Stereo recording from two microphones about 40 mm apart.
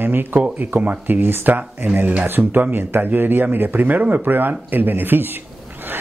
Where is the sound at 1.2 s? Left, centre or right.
Right.